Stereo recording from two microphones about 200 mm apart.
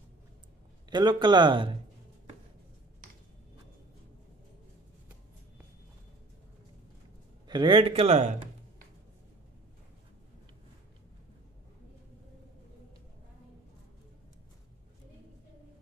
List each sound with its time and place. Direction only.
0.8 s speech: 20° right (ahead or behind)
7.4 s speech: 20° right (ahead or behind)